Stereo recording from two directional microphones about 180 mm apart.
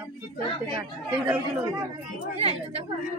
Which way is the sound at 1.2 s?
10° right (ahead or behind).